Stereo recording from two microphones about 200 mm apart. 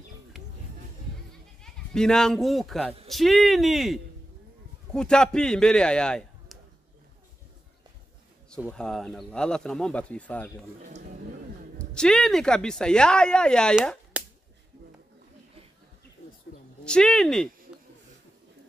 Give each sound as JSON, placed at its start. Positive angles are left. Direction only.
{"t": 0.3, "sound": "a sound", "side_deg": 0}
{"t": 1.6, "sound": "a man's voice", "side_deg": 5}
{"t": 8.5, "sound": "speech", "side_deg": 5}
{"t": 10.8, "sound": "a sound", "side_deg": -40}
{"t": 11.8, "sound": "speech", "side_deg": 5}
{"t": 14.2, "sound": "whip", "side_deg": -5}
{"t": 16.8, "sound": "speech", "side_deg": 5}